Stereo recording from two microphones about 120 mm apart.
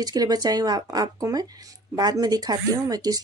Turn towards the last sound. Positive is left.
turn(degrees=-30)  # may be behind; listen again after turning